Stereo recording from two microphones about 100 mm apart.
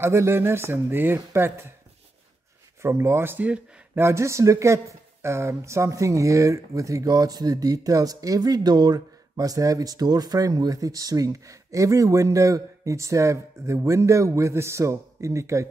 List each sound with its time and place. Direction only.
0.0 s speech: 25° right (ahead or behind)
2.8 s speech: 25° right (ahead or behind)
4.0 s speech: 30° right (ahead or behind)